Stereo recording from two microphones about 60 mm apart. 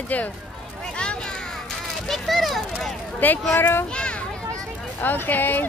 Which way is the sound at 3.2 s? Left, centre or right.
Left.